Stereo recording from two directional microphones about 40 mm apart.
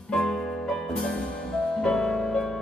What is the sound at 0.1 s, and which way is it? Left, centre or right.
Music, centre.